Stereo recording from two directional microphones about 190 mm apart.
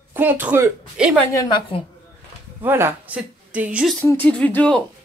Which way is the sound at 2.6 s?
10° right (ahead or behind).